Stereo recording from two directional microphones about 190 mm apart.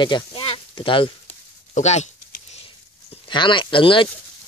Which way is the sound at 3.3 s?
25° left (ahead or behind).